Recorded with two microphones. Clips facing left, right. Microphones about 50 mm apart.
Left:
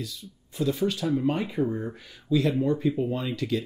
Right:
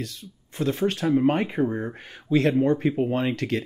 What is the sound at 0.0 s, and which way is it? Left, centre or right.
Speech, right.